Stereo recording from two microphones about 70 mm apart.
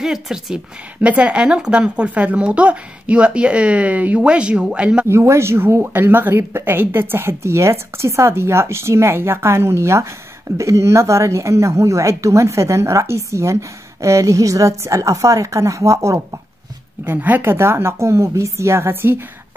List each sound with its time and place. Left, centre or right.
0.0 s speech: centre
1.0 s speech: centre
5.1 s a woman's voice: right
17.0 s speech: right